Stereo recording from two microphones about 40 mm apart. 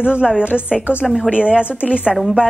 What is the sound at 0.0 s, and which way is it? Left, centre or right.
Speech, right.